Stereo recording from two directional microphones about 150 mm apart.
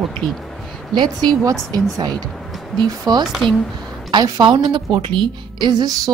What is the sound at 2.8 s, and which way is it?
Speech, 25° right (ahead or behind).